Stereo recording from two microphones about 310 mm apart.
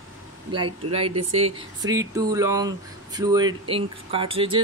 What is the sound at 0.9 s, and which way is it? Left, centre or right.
Speech, centre.